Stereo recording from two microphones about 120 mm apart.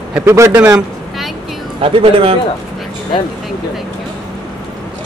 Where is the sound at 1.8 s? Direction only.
50° right (ahead or behind).